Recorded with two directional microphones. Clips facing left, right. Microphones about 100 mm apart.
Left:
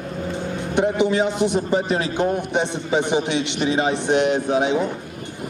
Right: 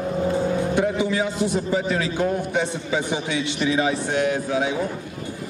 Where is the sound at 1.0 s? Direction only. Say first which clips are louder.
Left 4 dB; 20° left (ahead or behind).